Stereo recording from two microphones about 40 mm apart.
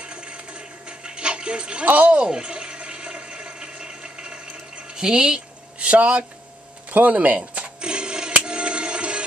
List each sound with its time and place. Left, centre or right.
0.0 s music: right
1.9 s speech: right
2.3 s toilet flush: right
4.8 s speech: centre
5.8 s speech: right
6.9 s cash register: right
8.4 s music: right